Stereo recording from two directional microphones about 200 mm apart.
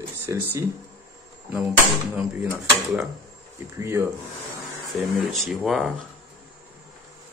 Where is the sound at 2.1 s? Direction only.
10° right (ahead or behind).